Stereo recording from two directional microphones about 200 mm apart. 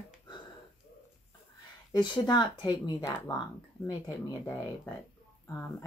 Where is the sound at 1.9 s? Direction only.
20° left (ahead or behind).